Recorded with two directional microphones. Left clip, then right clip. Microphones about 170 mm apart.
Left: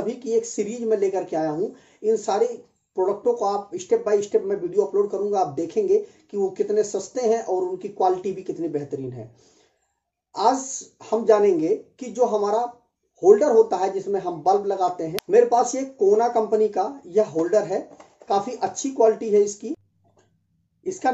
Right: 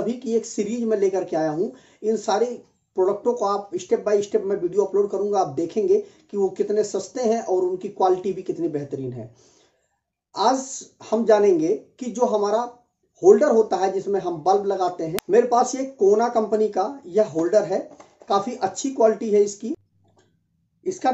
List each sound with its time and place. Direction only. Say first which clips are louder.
0.0 s speech: left 1 dB; 15° right (ahead or behind)
10.3 s speech: even; 15° right (ahead or behind)
20.8 s a woman's voice: right 1 dB; 20° right (ahead or behind)